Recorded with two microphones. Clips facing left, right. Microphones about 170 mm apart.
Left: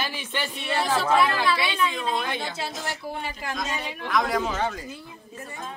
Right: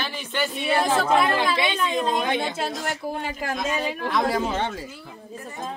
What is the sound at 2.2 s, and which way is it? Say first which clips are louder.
Speech: right 6 dB; 20° right (ahead or behind).